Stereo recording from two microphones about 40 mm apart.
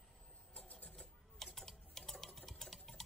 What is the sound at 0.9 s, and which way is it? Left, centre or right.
Sewing machine, centre.